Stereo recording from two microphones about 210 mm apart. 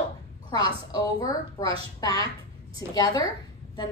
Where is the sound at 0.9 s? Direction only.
15° left (ahead or behind).